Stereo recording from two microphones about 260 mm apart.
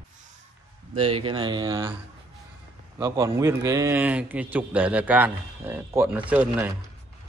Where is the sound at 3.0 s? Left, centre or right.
Centre.